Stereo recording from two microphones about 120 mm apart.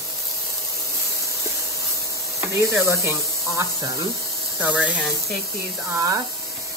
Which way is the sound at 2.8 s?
25° right (ahead or behind).